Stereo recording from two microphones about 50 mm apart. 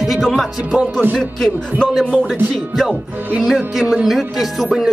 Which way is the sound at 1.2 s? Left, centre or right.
Centre.